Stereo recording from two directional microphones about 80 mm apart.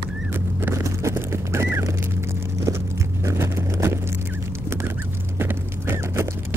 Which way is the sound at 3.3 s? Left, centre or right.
Right.